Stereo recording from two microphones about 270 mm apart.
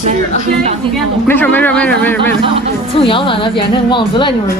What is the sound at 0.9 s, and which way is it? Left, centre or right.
Speech, centre.